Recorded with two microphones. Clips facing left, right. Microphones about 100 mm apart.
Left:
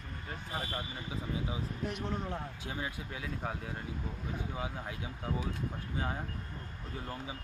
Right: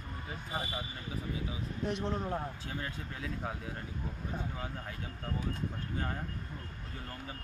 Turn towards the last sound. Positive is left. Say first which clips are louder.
# left 3 dB
turn(degrees=15)  # may be behind; listen again after turning